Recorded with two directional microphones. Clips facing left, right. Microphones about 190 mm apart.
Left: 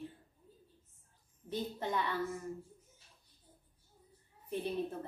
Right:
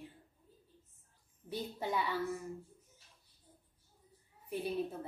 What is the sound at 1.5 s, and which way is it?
Speech, 10° right (ahead or behind).